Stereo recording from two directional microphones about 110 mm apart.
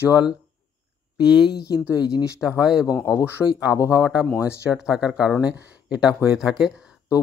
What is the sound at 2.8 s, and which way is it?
Speech, 30° left (ahead or behind).